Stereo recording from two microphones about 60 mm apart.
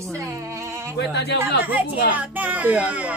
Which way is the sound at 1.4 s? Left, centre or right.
Right.